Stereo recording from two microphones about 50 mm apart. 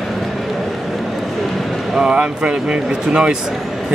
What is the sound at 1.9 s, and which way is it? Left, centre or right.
Speech, right.